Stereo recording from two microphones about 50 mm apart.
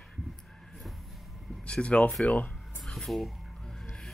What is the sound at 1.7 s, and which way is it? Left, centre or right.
Speech, left.